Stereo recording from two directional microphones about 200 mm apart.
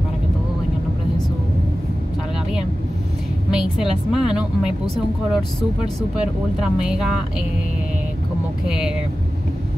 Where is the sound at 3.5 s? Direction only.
Centre (ahead or behind).